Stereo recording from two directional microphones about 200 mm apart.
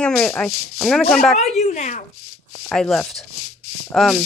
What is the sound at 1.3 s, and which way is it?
Speech, 35° left (ahead or behind).